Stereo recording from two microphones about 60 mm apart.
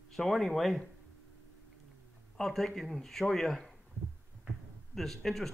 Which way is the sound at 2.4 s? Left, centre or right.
Centre.